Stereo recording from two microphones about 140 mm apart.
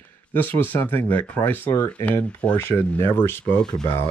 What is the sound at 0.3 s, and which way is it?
Speech, 15° left (ahead or behind).